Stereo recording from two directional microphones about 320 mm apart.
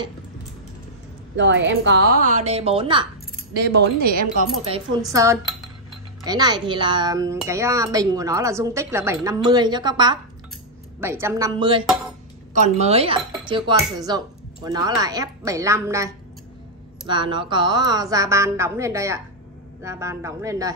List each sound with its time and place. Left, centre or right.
1.3 s a woman's voice: right; by 3.1 s centre
4.0 s a woman's voice: right
4.6 s a woman's voice: centre
13.4 s cutlery: centre
13.9 s a woman's voice: centre
17.1 s a woman's voice: centre